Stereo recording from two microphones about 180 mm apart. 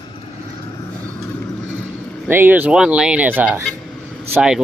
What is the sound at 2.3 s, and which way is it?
Speech, 10° right (ahead or behind).